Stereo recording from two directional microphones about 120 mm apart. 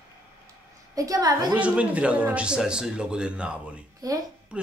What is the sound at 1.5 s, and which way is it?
Speech, 10° right (ahead or behind).